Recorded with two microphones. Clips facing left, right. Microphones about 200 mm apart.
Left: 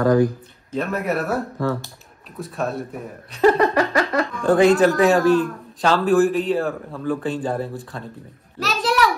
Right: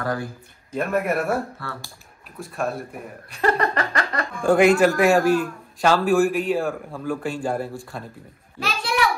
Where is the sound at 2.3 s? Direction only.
Centre (ahead or behind).